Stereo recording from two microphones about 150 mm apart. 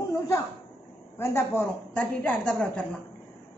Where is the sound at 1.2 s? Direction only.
15° left (ahead or behind).